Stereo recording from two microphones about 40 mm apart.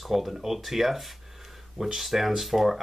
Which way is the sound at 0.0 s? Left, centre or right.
Centre.